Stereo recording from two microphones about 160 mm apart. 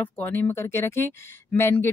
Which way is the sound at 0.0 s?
10° left (ahead or behind).